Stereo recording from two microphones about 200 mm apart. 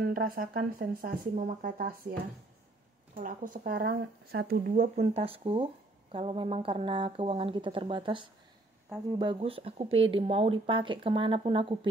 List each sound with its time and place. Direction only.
0.1 s speech: 45° right (ahead or behind)
3.2 s speech: 40° right (ahead or behind); by 11.9 s 25° right (ahead or behind)